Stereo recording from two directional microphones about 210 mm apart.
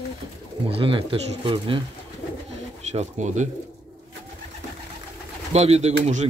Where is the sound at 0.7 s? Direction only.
25° right (ahead or behind).